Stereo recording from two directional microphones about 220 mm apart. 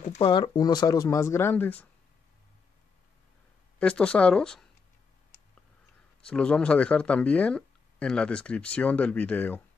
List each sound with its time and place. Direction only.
0.0 s speech: 35° left (ahead or behind)
0.3 s speech: 20° left (ahead or behind)
3.8 s speech: 5° left (ahead or behind)
6.2 s speech: 5° left (ahead or behind)